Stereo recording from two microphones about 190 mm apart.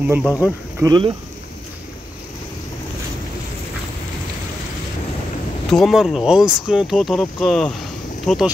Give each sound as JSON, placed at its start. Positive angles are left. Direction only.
{"t": 0.2, "sound": "speech", "side_deg": 15}
{"t": 0.7, "sound": "speech", "side_deg": -20}
{"t": 5.7, "sound": "speech", "side_deg": 0}